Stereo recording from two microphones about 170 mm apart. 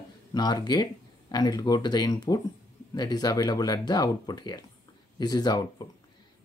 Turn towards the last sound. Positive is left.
turn(degrees=25)  # may be behind; listen again after turning